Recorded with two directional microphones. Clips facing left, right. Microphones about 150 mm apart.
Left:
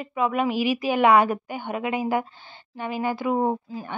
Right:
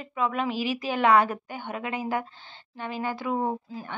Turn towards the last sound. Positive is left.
turn(degrees=15)  # may be behind; listen again after turning